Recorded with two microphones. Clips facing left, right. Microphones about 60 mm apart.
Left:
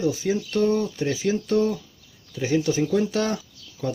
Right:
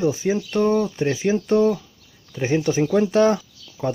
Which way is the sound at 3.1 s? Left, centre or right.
Right.